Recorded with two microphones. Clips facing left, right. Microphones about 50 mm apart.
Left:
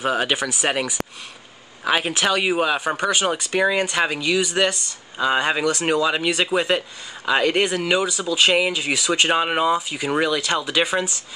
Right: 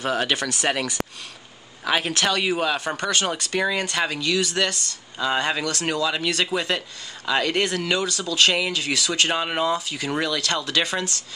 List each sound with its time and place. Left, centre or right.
0.0 s speech: centre